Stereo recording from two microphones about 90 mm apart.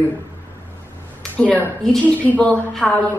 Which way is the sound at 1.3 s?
15° left (ahead or behind).